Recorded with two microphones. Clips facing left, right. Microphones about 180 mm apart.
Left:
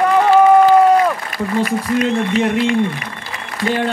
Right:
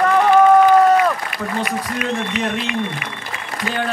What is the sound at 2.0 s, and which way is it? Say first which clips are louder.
Speech: left 5 dB; 30° left (ahead or behind).